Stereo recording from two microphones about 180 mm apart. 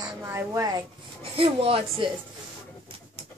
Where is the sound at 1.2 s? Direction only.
30° right (ahead or behind).